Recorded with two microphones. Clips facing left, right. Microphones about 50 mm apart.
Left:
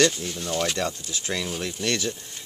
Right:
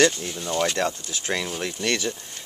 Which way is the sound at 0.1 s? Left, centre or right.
Centre.